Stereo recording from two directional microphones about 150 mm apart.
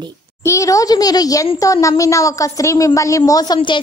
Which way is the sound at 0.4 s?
20° left (ahead or behind).